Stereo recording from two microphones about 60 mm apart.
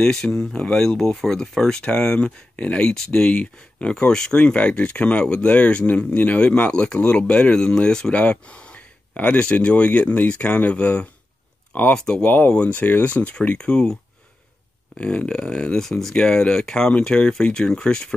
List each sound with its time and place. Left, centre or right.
0.0 s speech: centre
12.3 s speech: left; by 13.9 s centre
15.0 s speech: centre
15.8 s speech: centre